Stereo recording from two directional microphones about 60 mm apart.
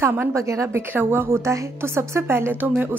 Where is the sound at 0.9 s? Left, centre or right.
Right.